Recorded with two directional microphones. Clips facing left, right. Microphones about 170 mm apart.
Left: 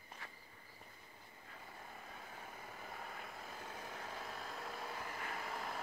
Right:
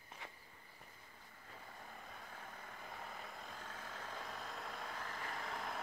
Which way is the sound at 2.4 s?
10° left (ahead or behind).